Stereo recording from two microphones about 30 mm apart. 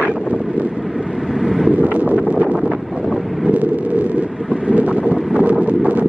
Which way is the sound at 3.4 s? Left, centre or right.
Right.